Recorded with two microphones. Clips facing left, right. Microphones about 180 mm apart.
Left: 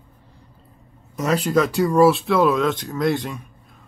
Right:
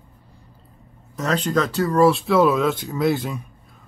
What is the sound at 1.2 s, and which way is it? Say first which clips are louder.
Speech: left 2 dB; 10° left (ahead or behind).